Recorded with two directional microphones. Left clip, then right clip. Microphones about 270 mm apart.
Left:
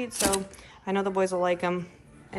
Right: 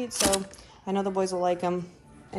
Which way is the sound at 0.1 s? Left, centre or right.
Centre.